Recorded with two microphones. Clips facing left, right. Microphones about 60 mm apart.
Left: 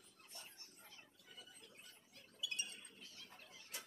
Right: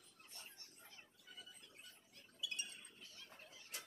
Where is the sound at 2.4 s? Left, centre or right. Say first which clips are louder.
Left 1 dB; left.